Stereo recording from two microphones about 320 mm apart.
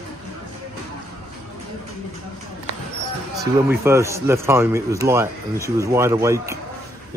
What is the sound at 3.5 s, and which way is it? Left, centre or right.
A man's voice, centre.